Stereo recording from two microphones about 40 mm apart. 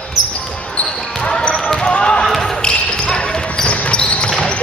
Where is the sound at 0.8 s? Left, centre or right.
Left.